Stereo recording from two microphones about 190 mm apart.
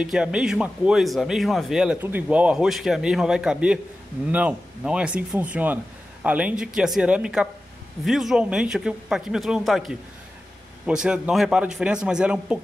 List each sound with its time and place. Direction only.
0.0 s speech: 5° right (ahead or behind)